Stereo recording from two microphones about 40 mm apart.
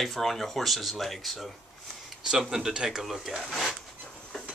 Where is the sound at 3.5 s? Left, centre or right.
Centre.